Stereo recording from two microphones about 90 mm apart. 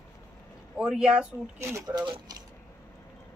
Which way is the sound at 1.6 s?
30° right (ahead or behind).